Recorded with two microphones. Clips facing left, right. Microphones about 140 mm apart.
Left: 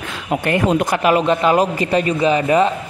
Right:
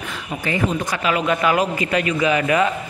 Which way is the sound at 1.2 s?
25° left (ahead or behind).